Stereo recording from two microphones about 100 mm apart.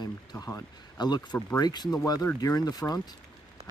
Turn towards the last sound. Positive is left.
turn(degrees=40)  # may be behind; listen again after turning